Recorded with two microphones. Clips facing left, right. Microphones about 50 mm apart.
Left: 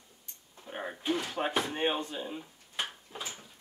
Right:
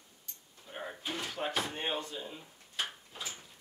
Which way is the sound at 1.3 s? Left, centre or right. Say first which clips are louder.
Left 4 dB; left.